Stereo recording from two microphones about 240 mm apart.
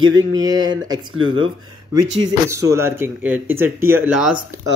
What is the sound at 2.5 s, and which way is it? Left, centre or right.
Speech, centre.